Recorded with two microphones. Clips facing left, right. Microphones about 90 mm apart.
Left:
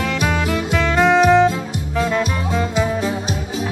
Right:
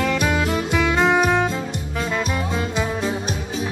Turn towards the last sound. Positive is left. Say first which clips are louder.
# left 4 dB
turn(degrees=0)  # may be behind; listen again after turning